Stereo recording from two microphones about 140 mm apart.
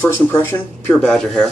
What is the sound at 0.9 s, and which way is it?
Speech, 5° left (ahead or behind).